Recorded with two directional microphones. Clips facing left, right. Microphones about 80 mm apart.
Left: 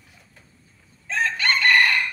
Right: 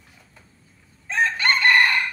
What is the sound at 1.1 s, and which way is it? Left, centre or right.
Chicken, right.